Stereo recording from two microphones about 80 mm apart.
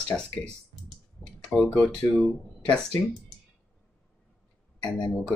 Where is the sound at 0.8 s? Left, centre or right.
Centre.